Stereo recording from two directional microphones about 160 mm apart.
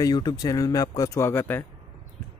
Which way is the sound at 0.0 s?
25° left (ahead or behind).